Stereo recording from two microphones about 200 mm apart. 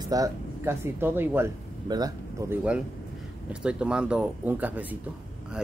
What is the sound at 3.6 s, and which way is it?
Speech, 5° right (ahead or behind).